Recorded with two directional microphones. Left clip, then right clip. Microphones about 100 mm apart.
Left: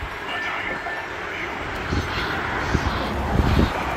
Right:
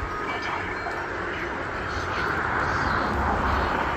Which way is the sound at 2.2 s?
25° left (ahead or behind).